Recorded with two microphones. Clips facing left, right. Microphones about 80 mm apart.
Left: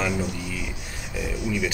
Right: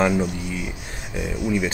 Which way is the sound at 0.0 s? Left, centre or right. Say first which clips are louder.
Right 6 dB; right.